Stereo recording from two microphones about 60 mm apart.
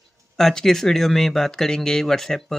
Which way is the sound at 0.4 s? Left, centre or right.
Centre.